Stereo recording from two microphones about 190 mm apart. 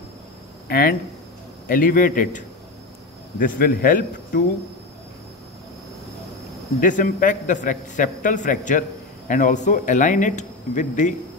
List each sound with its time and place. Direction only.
0.7 s a man's voice: 50° left (ahead or behind)
6.8 s a man's voice: 45° left (ahead or behind)